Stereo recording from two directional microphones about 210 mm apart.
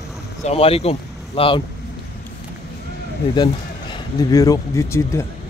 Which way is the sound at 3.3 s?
20° left (ahead or behind).